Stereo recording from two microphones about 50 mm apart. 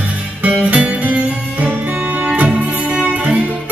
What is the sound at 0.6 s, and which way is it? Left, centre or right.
Music, right.